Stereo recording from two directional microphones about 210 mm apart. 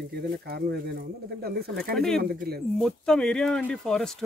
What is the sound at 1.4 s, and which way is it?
Speech, 45° right (ahead or behind).